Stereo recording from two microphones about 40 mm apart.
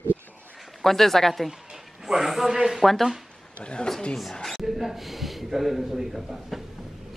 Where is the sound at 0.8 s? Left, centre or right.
Centre.